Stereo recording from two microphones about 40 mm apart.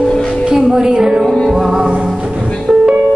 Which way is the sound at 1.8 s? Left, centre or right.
Right.